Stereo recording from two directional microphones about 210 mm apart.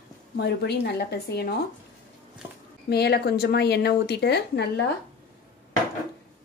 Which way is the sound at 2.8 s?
50° left (ahead or behind).